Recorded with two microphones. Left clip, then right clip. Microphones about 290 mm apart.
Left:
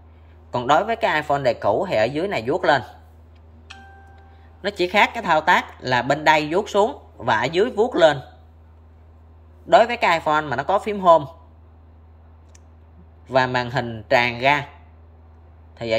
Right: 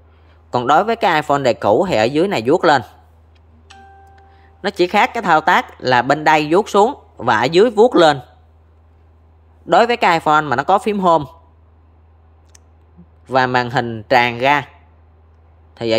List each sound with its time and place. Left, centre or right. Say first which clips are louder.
0.5 s speech: right 5 dB; centre
4.1 s speech: right 4 dB; centre
9.7 s speech: right 3 dB; centre
13.3 s speech: right 4 dB; centre
15.7 s a sound: right 5 dB; centre